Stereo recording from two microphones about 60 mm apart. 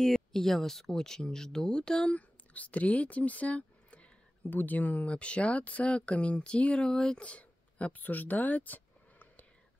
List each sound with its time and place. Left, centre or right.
0.0 s speech: centre; by 9.5 s left